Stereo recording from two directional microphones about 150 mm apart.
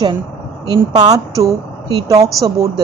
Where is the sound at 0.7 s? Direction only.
25° right (ahead or behind).